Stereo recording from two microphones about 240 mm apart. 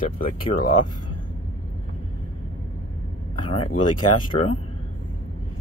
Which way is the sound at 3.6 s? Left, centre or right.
Left.